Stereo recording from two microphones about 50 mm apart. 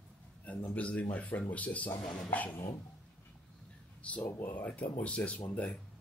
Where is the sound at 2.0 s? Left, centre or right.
Centre.